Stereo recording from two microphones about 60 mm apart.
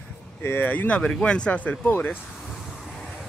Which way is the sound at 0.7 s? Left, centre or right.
Left.